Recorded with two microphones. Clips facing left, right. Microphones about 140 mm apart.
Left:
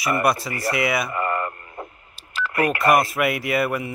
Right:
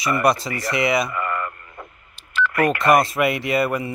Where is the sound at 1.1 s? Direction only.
35° left (ahead or behind).